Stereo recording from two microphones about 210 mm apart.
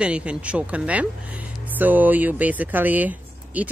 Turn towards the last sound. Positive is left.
turn(degrees=-5)  # may be behind; listen again after turning